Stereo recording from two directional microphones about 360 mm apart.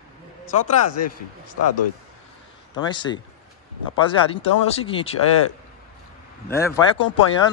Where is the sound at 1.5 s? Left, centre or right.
Left.